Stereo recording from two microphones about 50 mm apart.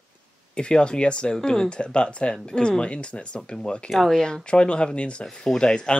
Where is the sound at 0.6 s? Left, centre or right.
Centre.